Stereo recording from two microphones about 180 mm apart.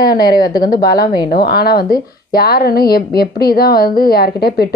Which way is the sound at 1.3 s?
55° left (ahead or behind).